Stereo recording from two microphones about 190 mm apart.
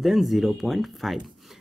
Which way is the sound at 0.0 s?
Centre (ahead or behind).